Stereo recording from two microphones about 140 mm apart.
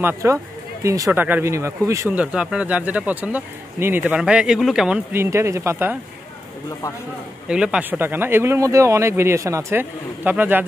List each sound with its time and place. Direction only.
0.0 s speech: 20° right (ahead or behind)
2.0 s speech: 10° right (ahead or behind)
5.1 s speech: 20° right (ahead or behind)
7.4 s speech: 5° right (ahead or behind)